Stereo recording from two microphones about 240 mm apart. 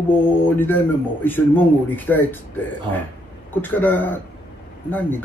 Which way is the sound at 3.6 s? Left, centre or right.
Centre.